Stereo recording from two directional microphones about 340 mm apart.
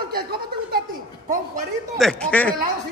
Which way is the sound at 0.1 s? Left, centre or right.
Right.